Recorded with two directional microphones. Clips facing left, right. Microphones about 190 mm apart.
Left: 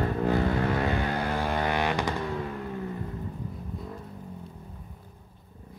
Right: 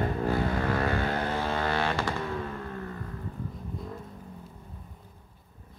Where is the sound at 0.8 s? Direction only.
15° left (ahead or behind).